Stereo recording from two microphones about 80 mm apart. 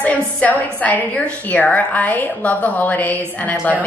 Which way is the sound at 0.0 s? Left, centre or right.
Centre.